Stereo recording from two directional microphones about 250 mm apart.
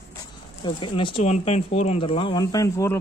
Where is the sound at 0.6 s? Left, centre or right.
Centre.